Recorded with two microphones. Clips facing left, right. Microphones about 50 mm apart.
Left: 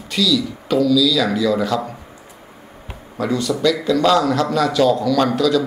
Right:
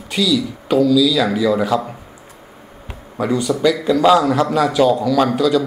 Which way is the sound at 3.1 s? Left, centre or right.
Centre.